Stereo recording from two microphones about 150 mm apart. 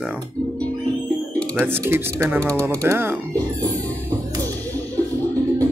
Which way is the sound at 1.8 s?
15° right (ahead or behind).